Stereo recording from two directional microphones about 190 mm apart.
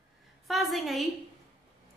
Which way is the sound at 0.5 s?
Centre (ahead or behind).